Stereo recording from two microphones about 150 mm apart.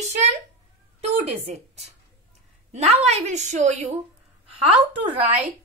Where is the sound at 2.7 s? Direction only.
45° right (ahead or behind).